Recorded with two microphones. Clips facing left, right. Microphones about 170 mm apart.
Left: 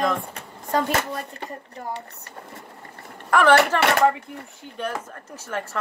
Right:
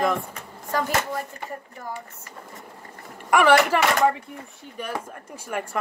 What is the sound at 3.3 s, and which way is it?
Speech, 10° right (ahead or behind).